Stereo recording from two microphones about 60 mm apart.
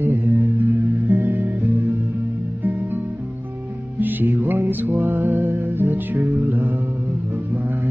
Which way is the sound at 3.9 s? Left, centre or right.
Right.